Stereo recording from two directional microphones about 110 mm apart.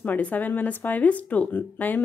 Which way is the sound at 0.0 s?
15° left (ahead or behind).